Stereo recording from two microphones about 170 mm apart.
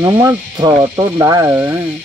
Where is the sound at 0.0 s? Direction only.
15° right (ahead or behind).